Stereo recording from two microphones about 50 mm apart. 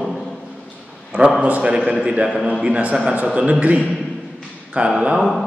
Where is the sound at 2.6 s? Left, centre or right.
Right.